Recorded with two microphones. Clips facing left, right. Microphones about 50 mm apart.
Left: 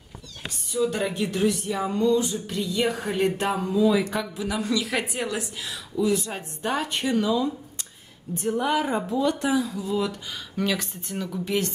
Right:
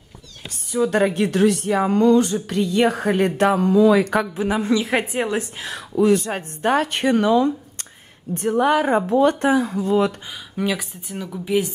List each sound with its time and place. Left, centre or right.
0.7 s speech: right
4.4 s a woman's voice: right
5.4 s speech: right
10.5 s speech: centre